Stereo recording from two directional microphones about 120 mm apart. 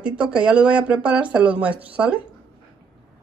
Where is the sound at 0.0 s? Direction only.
10° right (ahead or behind).